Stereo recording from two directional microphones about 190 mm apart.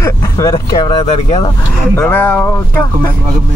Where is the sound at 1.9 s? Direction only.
10° left (ahead or behind).